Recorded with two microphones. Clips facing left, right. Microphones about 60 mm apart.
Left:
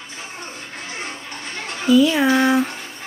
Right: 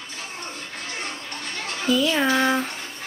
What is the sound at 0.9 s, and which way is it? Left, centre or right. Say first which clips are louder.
Music: left 1 dB; centre.